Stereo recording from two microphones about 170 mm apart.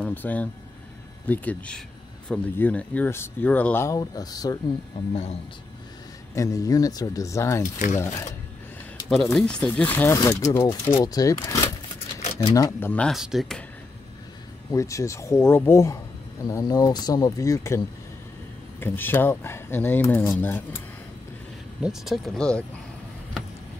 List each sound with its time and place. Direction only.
0.0 s speech: 10° left (ahead or behind)
4.9 s speech: 35° left (ahead or behind)
6.3 s speech: 20° left (ahead or behind)
9.1 s speech: centre (ahead or behind); by 11.7 s 20° left (ahead or behind)
12.2 s a sound: 35° left (ahead or behind)
12.5 s speech: 20° left (ahead or behind)
12.9 s speech: centre (ahead or behind)
14.7 s speech: 20° left (ahead or behind)
21.8 s speech: centre (ahead or behind)